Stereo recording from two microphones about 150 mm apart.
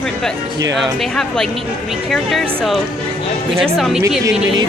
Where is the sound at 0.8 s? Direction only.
Centre (ahead or behind).